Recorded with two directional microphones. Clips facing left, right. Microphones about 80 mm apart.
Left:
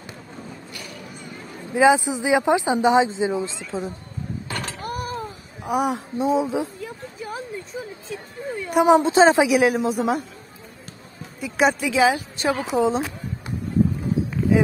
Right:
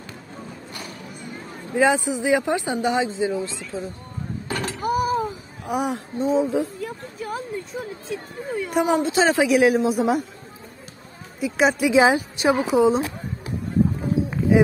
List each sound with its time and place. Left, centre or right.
1.7 s speech: centre
4.8 s a sound: centre
5.7 s a woman's voice: centre
8.8 s speech: left
9.5 s a woman's voice: centre
11.3 s speech: centre
11.8 s a woman's voice: right; by 13.0 s centre
14.5 s a sound: centre